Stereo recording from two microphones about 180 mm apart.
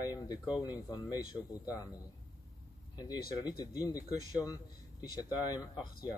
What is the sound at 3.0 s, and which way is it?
Speech, 20° left (ahead or behind).